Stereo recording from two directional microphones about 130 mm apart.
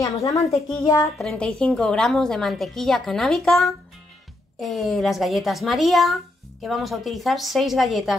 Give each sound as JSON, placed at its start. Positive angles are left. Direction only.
{"t": 0.4, "sound": "a woman's voice", "side_deg": 0}
{"t": 0.7, "sound": "speech", "side_deg": 25}
{"t": 1.1, "sound": "a woman's voice", "side_deg": 0}